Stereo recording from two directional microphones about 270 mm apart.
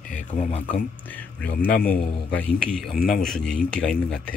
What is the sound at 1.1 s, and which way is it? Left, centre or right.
Speech, centre.